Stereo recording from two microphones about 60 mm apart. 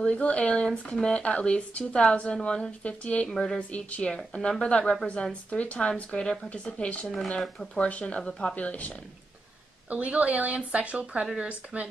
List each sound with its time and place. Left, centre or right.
0.0 s speech: left
3.3 s speech: centre
3.5 s speech: left
4.1 s speech: centre
9.8 s speech: right